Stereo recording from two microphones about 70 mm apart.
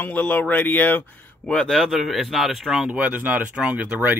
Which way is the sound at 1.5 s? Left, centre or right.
Centre.